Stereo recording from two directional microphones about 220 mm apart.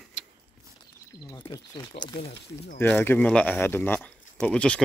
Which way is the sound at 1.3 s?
15° left (ahead or behind).